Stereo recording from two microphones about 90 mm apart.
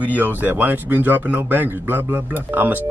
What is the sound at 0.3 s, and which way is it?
Speech, 20° right (ahead or behind).